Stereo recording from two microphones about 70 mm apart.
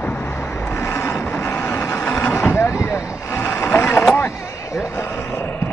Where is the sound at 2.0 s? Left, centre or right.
Left.